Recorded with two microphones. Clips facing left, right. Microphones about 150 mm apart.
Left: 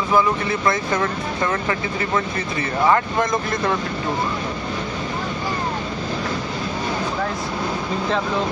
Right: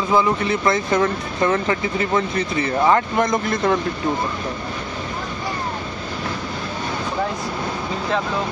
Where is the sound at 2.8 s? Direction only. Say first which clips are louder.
Even; 15° right (ahead or behind).